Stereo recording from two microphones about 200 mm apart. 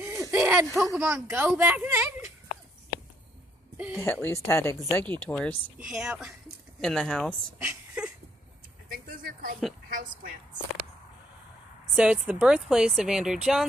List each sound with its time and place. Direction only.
0.0 s a sound: 15° right (ahead or behind)
0.9 s speech: 10° right (ahead or behind)
3.7 s speech: 5° right (ahead or behind)
4.0 s speech: 10° left (ahead or behind)
5.9 s speech: 5° right (ahead or behind)
7.6 s a sound: 5° right (ahead or behind)
8.9 s a sound: 45° right (ahead or behind)
9.8 s a woman's voice: 45° right (ahead or behind)
11.9 s speech: 5° right (ahead or behind)